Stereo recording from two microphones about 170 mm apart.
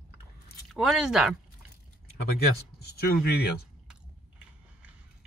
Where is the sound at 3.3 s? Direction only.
65° left (ahead or behind).